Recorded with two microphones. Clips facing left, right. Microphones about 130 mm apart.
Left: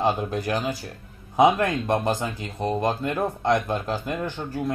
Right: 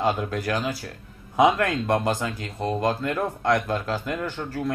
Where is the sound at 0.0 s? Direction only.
20° left (ahead or behind).